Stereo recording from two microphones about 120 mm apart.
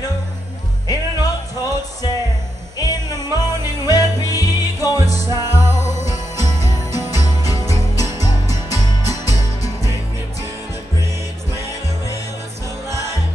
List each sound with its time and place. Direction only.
0.8 s music: 30° left (ahead or behind)
5.2 s music: 25° right (ahead or behind)
5.7 s music: 30° left (ahead or behind)